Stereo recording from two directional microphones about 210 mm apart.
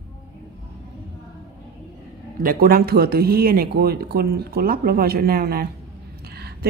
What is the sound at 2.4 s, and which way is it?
Speech, 45° right (ahead or behind).